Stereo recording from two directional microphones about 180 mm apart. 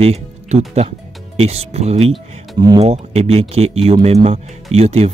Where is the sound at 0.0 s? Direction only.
35° right (ahead or behind).